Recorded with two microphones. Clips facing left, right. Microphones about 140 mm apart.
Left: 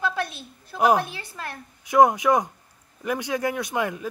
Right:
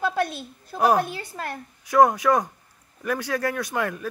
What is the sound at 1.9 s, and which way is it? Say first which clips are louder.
Speech: even; 15° left (ahead or behind).